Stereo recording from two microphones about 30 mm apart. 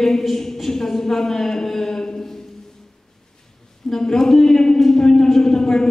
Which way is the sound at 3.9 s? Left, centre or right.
Centre.